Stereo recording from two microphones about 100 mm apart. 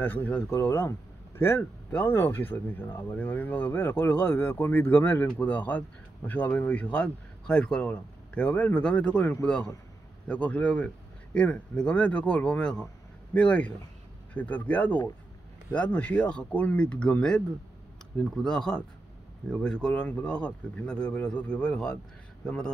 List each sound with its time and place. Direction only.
0.0 s a man's voice: 20° left (ahead or behind)
9.2 s a man's voice: 25° left (ahead or behind)